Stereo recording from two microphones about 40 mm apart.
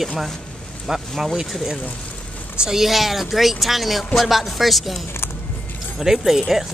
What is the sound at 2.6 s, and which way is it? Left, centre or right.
Speech, centre.